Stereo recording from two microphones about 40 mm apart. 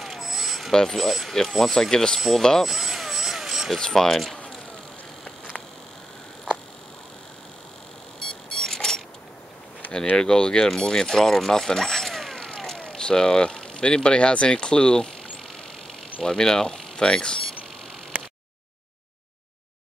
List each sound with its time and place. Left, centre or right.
0.0 s smoke detector: centre
0.7 s speech: centre
1.6 s speech: centre
2.1 s speech: centre
2.6 s vehicle: centre
3.8 s speech: centre
8.5 s mechanisms: centre
10.1 s speech: centre
12.4 s speech: centre
16.2 s speech: centre